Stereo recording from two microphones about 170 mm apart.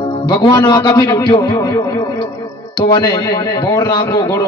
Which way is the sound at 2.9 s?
25° left (ahead or behind).